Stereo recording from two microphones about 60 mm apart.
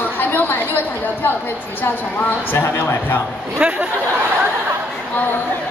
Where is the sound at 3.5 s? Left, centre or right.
Right.